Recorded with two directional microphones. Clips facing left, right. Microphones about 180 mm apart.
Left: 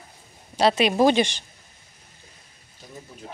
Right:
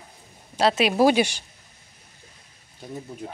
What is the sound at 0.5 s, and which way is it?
Speech, centre (ahead or behind).